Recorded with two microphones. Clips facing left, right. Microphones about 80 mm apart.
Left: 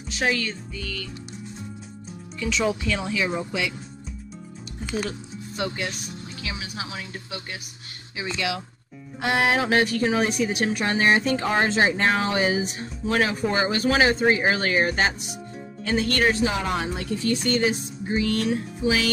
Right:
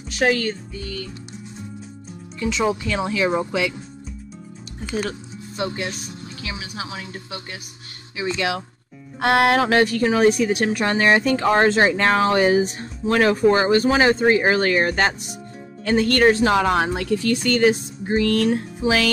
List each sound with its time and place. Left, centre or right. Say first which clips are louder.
0.1 s speech: right 5 dB; right
0.7 s speech: right 3 dB; right
2.4 s speech: right 3 dB; right
3.1 s speech: right 5 dB; right
5.6 s speech: right 3 dB; right
6.4 s music: right 2 dB; right
8.2 s speech: right 5 dB; right
9.2 s a sound: right 5 dB; right
10.4 s speech: right 4 dB; right
13.6 s speech: right 4 dB; right
16.5 s speech: right 8 dB; right